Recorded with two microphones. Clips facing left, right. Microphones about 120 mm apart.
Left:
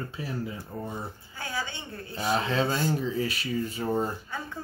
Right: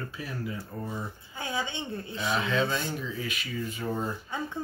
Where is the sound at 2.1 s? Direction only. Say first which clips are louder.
Left 2 dB; 35° left (ahead or behind).